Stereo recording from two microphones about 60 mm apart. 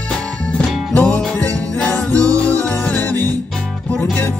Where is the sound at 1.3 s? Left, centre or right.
Left.